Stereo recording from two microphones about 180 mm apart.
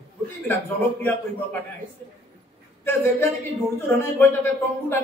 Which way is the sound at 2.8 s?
10° left (ahead or behind).